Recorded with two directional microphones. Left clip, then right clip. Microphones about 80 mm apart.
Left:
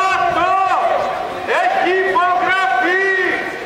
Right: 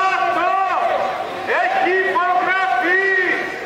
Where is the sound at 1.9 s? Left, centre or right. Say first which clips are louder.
Left 2 dB; left.